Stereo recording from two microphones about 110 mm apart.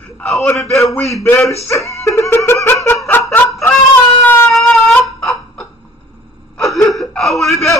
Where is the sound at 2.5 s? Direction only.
20° left (ahead or behind).